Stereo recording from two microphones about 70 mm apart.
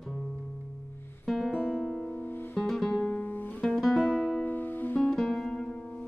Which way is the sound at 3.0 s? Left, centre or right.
Left.